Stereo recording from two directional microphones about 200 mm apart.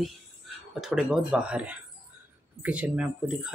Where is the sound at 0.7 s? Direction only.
Centre (ahead or behind).